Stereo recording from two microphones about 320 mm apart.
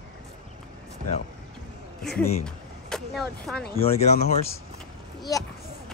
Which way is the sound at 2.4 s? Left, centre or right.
Centre.